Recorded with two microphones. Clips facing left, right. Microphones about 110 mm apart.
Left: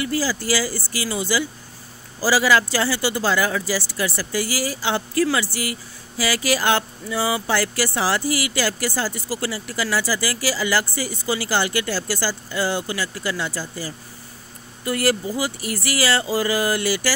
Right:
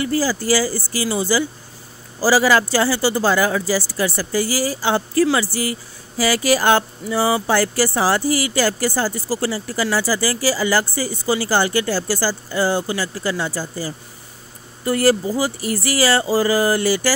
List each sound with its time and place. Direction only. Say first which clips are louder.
0.0 s speech: right 4 dB; 40° right (ahead or behind)